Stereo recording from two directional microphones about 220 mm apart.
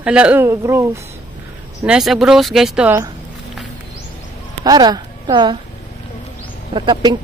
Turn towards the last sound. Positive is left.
turn(degrees=-20)  # may be behind; listen again after turning